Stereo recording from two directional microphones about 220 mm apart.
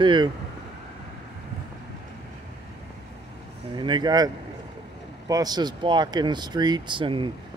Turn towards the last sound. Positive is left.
turn(degrees=-20)  # may be behind; listen again after turning